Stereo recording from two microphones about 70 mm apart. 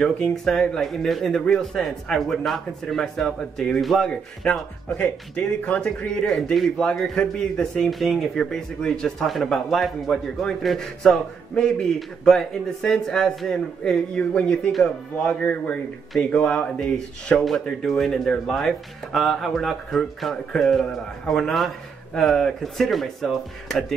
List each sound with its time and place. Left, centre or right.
0.0 s a man's voice: centre